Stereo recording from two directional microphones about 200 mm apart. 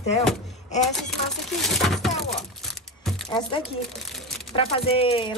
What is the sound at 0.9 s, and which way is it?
Speech, centre (ahead or behind).